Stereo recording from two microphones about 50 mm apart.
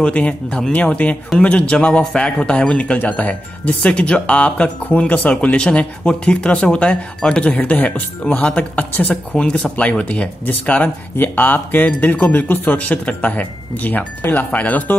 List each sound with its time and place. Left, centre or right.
0.0 s speech: left